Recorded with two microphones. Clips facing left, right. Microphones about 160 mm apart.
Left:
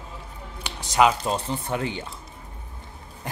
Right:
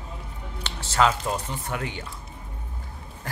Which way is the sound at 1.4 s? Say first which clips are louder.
Left 4 dB; 30° left (ahead or behind).